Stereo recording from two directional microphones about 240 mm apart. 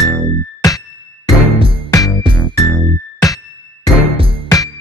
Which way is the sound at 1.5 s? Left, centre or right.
Right.